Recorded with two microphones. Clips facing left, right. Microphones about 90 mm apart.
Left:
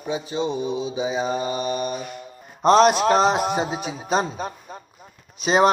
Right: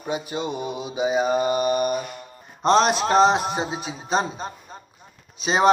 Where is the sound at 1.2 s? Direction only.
55° right (ahead or behind).